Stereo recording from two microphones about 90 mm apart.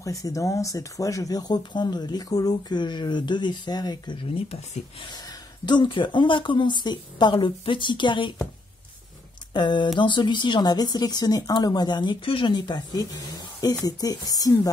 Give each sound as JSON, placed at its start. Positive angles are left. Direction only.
{"t": 0.0, "sound": "speech", "side_deg": 40}
{"t": 5.7, "sound": "speech", "side_deg": 60}
{"t": 9.5, "sound": "speech", "side_deg": 60}